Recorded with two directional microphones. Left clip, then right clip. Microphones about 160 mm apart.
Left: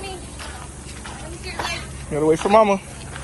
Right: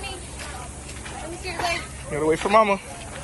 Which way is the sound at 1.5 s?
15° right (ahead or behind).